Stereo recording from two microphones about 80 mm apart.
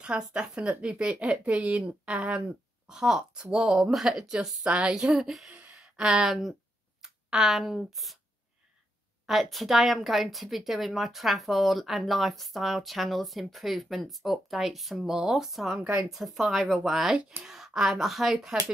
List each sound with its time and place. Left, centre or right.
0.0 s a woman's voice: centre
5.5 s speech: centre
9.2 s a woman's voice: centre
15.8 s a woman's voice: right
16.1 s a woman's voice: centre